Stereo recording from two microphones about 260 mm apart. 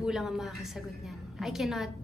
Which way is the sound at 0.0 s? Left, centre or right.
Centre.